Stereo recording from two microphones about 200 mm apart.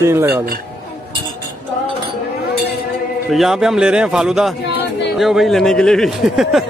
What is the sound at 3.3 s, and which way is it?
Speech, centre (ahead or behind).